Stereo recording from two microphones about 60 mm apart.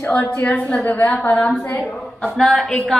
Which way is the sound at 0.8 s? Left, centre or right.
Left.